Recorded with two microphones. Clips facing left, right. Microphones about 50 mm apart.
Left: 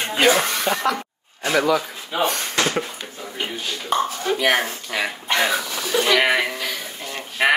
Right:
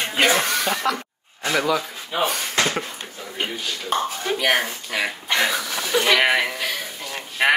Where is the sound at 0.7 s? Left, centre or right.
Centre.